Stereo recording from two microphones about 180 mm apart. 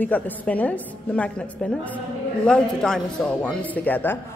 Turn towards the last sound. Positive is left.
turn(degrees=10)  # may be behind; listen again after turning